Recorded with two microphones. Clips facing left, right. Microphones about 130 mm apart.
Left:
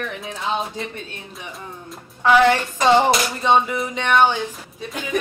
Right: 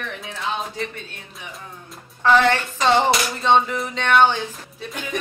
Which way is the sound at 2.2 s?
10° left (ahead or behind).